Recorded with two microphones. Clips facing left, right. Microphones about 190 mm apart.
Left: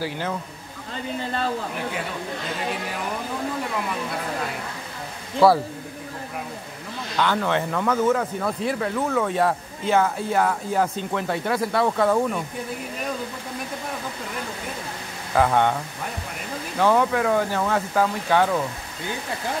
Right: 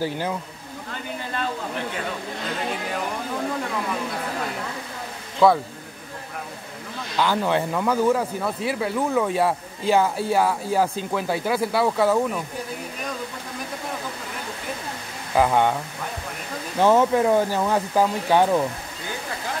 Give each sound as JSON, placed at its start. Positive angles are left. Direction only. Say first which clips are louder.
{"t": 5.4, "sound": "speech", "louder": "left 1 dB", "side_deg": 5}
{"t": 7.2, "sound": "speech", "louder": "right 1 dB", "side_deg": -10}
{"t": 15.3, "sound": "speech", "louder": "even", "side_deg": -15}
{"t": 16.7, "sound": "speech", "louder": "right 2 dB", "side_deg": -20}